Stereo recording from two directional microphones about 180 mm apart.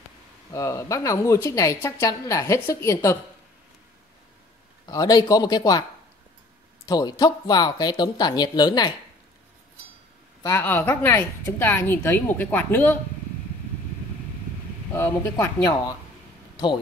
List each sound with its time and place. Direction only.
0.5 s a woman's voice: 15° left (ahead or behind)
4.8 s speech: 20° left (ahead or behind)
6.9 s speech: 20° left (ahead or behind)
10.4 s a woman's voice: 15° left (ahead or behind)
15.0 s a woman's voice: 15° left (ahead or behind)
16.5 s speech: 25° left (ahead or behind)